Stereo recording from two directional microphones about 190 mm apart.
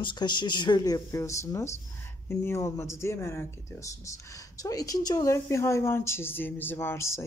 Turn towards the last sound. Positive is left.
turn(degrees=15)  # may be behind; listen again after turning